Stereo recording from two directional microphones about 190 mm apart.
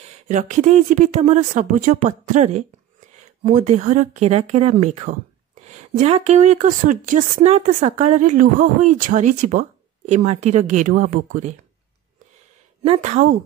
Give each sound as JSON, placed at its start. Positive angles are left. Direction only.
{"t": 0.0, "sound": "speech", "side_deg": -40}
{"t": 12.8, "sound": "speech", "side_deg": -35}